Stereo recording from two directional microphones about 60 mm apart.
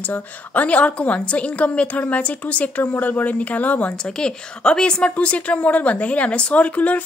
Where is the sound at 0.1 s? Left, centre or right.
Left.